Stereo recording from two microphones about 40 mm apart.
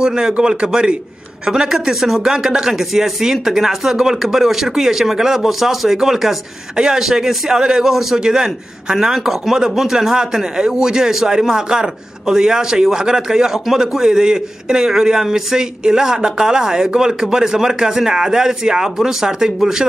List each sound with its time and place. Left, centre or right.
0.0 s speech: centre
2.7 s speech: centre